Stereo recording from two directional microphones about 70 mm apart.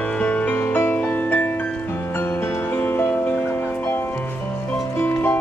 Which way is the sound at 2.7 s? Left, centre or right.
Left.